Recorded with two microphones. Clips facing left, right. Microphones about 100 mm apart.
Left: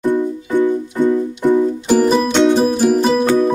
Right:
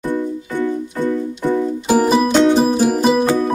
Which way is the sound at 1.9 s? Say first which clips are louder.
Even; 5° right (ahead or behind).